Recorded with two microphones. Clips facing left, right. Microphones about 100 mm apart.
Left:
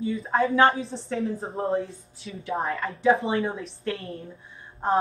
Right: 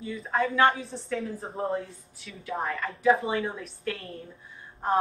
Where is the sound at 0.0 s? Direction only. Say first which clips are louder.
Left 4 dB; 30° left (ahead or behind).